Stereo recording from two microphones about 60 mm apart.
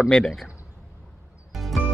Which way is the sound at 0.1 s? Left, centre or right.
Centre.